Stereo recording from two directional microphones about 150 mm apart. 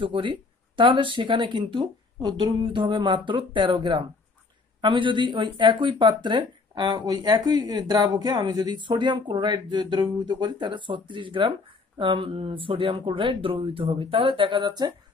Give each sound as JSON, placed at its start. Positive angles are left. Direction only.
{"t": 0.0, "sound": "speech", "side_deg": -35}